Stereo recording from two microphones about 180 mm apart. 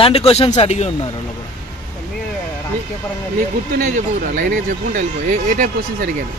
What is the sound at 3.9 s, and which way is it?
Speech, 45° right (ahead or behind).